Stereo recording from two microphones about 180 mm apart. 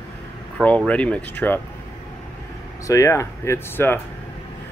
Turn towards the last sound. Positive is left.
turn(degrees=15)  # may be behind; listen again after turning